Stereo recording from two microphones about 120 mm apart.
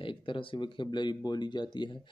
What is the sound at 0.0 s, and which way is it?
Speech, 45° left (ahead or behind).